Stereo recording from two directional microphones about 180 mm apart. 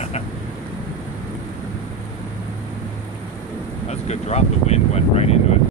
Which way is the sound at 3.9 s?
35° left (ahead or behind).